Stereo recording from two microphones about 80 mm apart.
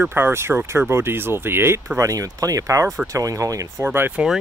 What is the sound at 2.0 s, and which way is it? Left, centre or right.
Speech, right.